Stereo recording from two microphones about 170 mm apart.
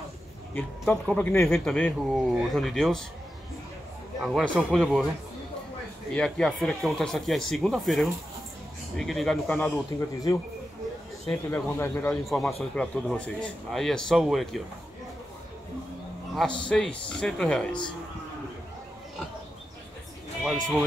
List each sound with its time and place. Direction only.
0.6 s a man's voice: 5° left (ahead or behind)
4.2 s a man's voice: centre (ahead or behind)
6.1 s a man's voice: 5° left (ahead or behind)
11.2 s speech: 15° left (ahead or behind)
12.3 s a man's voice: centre (ahead or behind)
16.6 s a man's voice: 5° left (ahead or behind)
20.4 s a man's voice: centre (ahead or behind)